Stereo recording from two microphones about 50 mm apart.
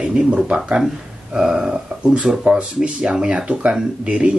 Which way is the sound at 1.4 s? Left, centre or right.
Centre.